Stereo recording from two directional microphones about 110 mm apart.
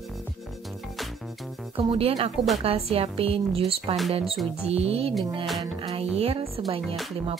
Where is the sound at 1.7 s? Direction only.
60° right (ahead or behind).